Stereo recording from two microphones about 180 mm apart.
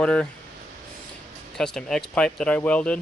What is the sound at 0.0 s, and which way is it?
Speech, 5° left (ahead or behind).